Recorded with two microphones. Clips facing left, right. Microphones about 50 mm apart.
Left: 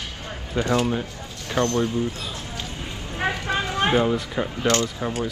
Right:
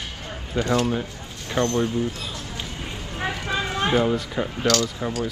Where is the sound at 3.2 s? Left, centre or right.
Left.